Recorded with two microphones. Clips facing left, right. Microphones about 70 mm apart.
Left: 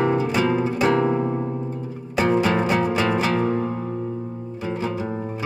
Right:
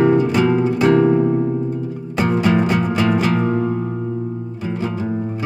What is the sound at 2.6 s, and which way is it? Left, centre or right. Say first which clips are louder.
Music: right 3 dB; centre.